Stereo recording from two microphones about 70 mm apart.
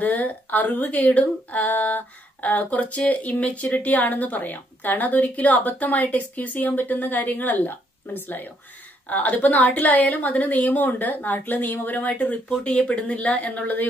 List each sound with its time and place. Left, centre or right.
0.0 s speech: left